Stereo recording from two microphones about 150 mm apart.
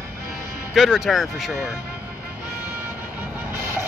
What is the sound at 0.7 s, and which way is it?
Speech, 5° right (ahead or behind).